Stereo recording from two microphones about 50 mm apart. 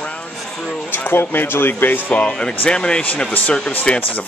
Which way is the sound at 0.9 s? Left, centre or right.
Left.